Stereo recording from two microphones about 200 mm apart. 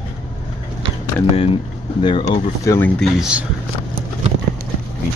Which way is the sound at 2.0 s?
25° left (ahead or behind).